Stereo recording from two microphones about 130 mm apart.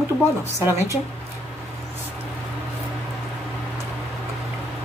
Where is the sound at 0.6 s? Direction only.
20° right (ahead or behind).